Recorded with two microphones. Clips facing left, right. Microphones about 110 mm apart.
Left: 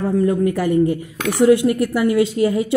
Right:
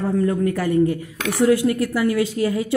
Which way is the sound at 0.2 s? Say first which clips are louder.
Left 3 dB; 15° left (ahead or behind).